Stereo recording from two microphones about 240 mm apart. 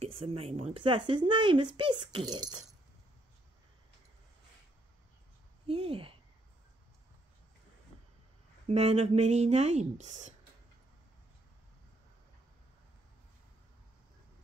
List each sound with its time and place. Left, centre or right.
0.0 s speech: right
5.7 s speech: right
8.6 s speech: right